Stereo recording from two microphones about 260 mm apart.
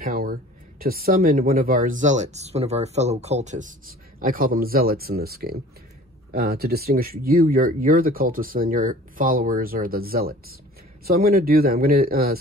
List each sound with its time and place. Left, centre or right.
0.0 s speech: right